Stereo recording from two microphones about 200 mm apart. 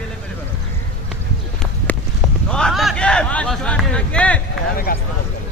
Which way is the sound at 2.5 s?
5° left (ahead or behind).